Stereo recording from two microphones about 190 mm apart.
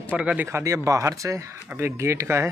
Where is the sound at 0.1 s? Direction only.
5° right (ahead or behind).